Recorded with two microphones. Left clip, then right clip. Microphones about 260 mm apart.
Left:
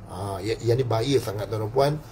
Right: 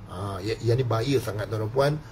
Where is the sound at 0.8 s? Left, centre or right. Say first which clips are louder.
Left 2 dB; centre.